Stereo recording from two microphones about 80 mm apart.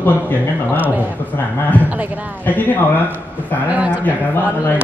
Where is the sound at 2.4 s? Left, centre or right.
Left.